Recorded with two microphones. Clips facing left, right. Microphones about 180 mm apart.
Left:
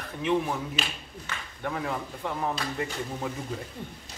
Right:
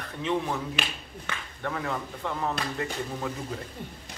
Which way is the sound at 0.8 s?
60° right (ahead or behind).